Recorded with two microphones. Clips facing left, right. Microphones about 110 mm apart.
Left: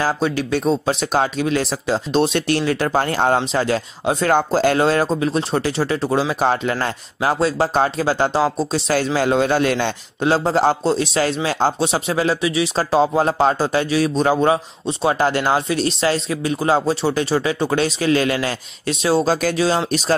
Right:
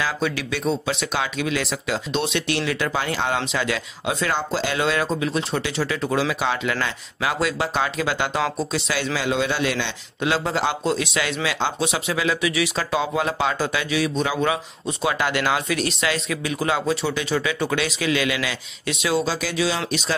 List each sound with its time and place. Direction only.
0.0 s speech: 40° left (ahead or behind)